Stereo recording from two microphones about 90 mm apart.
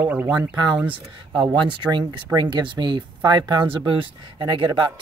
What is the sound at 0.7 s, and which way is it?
Speech, 15° right (ahead or behind).